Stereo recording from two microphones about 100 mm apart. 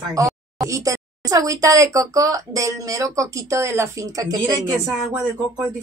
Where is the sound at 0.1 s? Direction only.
35° right (ahead or behind).